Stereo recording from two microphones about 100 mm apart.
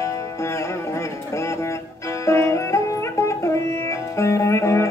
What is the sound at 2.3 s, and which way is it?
Music, 30° left (ahead or behind).